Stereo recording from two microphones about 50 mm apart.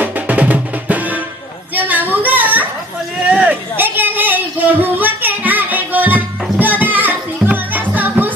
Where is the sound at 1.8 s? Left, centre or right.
Right.